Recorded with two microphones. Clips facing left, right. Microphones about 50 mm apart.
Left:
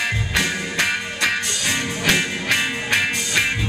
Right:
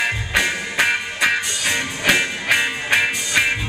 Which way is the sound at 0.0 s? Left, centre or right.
Centre.